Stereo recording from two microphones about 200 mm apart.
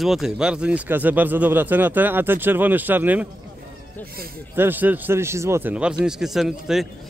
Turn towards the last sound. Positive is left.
turn(degrees=0)  # may be behind; listen again after turning